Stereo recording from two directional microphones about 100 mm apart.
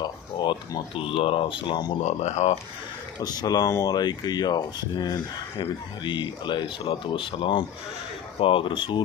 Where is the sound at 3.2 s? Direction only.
40° left (ahead or behind).